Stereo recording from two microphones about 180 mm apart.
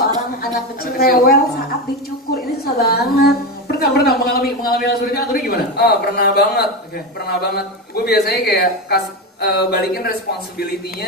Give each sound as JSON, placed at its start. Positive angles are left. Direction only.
{"t": 0.9, "sound": "a woman's voice", "side_deg": 55}
{"t": 2.6, "sound": "a woman's voice", "side_deg": 60}